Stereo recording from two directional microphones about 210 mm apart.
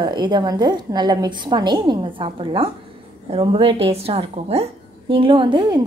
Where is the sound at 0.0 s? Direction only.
20° right (ahead or behind).